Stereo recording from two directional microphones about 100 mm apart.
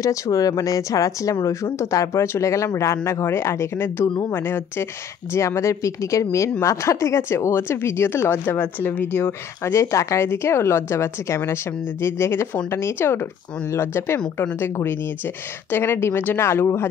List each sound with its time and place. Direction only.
0.0 s speech: 35° left (ahead or behind)